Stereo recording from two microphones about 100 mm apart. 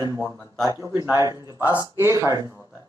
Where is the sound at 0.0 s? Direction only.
40° right (ahead or behind).